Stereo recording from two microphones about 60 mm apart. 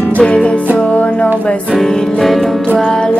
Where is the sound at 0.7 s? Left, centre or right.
Left.